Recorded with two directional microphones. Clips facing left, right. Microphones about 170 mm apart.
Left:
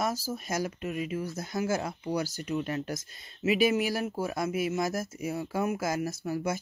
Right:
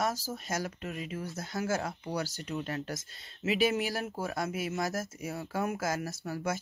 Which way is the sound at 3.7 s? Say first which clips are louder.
Left 4 dB; 40° right (ahead or behind).